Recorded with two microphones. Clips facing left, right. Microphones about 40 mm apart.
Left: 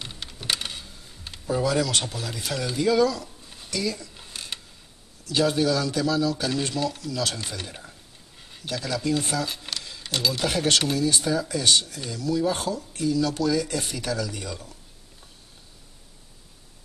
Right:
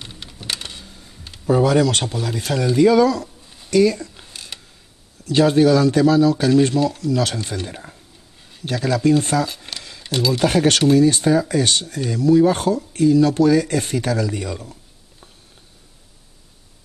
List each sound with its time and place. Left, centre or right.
0.0 s typing: centre
1.4 s speech: right
3.4 s a sound: centre
3.7 s speech: right
4.3 s mechanisms: centre
5.2 s speech: right
8.4 s a sound: centre
8.6 s speech: right
9.9 s a sound: centre
10.4 s speech: right